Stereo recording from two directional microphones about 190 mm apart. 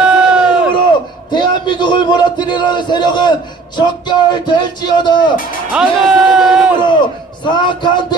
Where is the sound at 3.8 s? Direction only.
25° left (ahead or behind).